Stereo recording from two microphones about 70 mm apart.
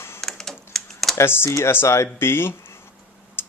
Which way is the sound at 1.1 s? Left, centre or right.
Left.